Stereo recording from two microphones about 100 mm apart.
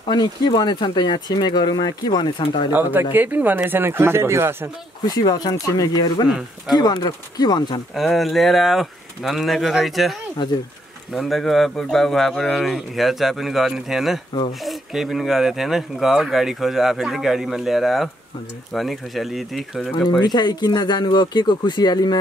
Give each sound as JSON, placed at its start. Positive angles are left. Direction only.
{"t": 0.0, "sound": "speech", "side_deg": 50}
{"t": 2.7, "sound": "speech", "side_deg": -20}
{"t": 5.0, "sound": "speech", "side_deg": 40}
{"t": 6.2, "sound": "speech", "side_deg": 0}
{"t": 6.8, "sound": "speech", "side_deg": 40}
{"t": 7.9, "sound": "speech", "side_deg": 0}
{"t": 11.1, "sound": "speech", "side_deg": 0}
{"t": 20.1, "sound": "speech", "side_deg": 45}